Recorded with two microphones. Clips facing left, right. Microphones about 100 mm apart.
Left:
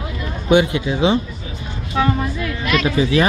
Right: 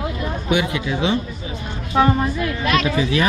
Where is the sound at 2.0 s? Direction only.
35° right (ahead or behind).